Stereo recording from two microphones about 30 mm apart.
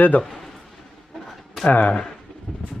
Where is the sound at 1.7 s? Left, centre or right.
Left.